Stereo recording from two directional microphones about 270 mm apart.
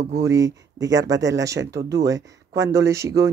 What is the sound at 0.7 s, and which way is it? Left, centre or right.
Speech, right.